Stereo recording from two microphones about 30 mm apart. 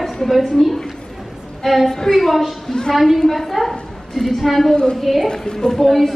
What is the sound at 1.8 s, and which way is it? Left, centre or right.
Speech, centre.